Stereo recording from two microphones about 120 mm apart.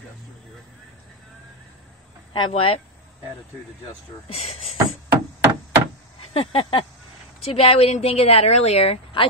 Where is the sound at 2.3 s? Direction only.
45° left (ahead or behind).